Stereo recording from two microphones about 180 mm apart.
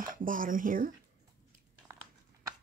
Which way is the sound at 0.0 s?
50° right (ahead or behind).